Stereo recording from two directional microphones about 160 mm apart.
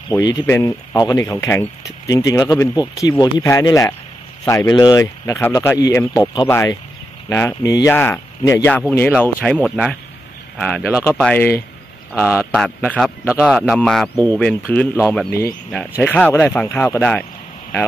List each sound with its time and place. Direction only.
0.1 s a man's voice: 25° left (ahead or behind)